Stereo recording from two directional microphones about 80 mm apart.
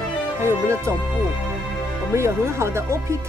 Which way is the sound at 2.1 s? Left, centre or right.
Right.